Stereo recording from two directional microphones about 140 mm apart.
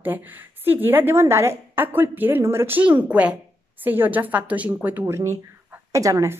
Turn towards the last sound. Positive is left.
turn(degrees=-25)  # may be behind; listen again after turning